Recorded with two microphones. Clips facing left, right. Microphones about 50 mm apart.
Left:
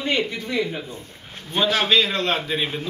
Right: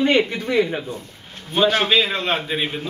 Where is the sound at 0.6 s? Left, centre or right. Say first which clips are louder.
Right 5 dB; right.